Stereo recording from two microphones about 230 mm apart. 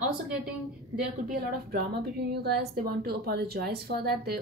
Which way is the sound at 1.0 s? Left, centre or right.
Right.